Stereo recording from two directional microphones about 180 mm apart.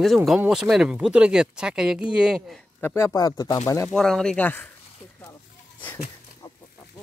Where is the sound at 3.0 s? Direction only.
15° left (ahead or behind).